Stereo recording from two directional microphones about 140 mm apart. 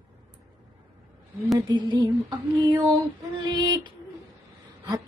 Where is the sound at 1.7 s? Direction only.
35° right (ahead or behind).